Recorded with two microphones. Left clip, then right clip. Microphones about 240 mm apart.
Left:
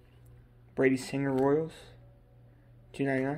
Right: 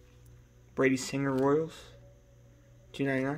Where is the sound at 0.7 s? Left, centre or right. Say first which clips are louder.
Left 1 dB; centre.